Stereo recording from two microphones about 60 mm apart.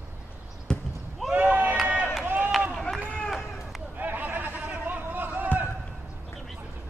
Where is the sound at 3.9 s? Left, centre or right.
Right.